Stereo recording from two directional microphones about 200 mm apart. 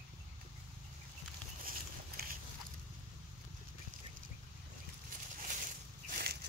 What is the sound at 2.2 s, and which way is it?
Biting, 50° right (ahead or behind).